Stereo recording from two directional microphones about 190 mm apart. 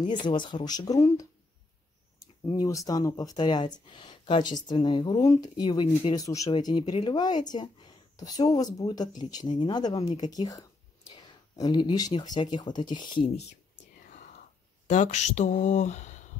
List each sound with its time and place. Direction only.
0.0 s speech: 25° left (ahead or behind)
2.4 s speech: 20° left (ahead or behind)
11.1 s a sound: 20° left (ahead or behind)
12.4 s speech: 25° left (ahead or behind)
14.9 s speech: 40° left (ahead or behind)